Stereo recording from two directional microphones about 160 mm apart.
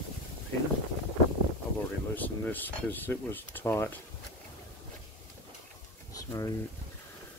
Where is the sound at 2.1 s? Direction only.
10° left (ahead or behind).